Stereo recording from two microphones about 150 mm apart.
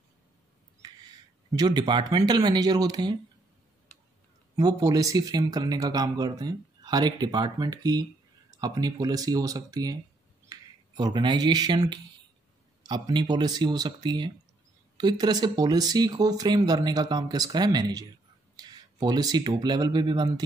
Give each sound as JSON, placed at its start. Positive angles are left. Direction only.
{"t": 0.8, "sound": "a sound", "side_deg": -25}
{"t": 1.5, "sound": "speech", "side_deg": -25}
{"t": 4.6, "sound": "speech", "side_deg": -25}